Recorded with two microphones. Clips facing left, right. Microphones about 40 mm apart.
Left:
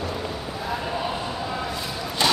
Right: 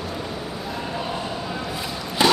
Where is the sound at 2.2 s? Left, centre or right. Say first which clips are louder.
Right 3 dB; centre.